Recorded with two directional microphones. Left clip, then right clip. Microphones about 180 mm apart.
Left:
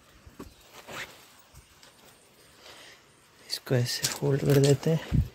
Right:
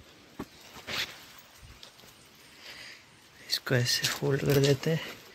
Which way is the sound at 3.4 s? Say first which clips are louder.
Right 1 dB; 15° left (ahead or behind).